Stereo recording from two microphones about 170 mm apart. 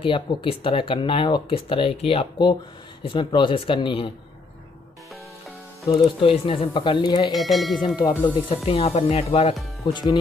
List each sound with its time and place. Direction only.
0.0 s speech: 30° left (ahead or behind)
5.9 s speech: 30° left (ahead or behind)
7.3 s speech: centre (ahead or behind)
7.8 s speech: 20° left (ahead or behind)
8.6 s speech: 35° left (ahead or behind)